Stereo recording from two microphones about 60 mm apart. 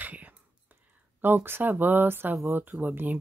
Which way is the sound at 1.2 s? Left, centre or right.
Right.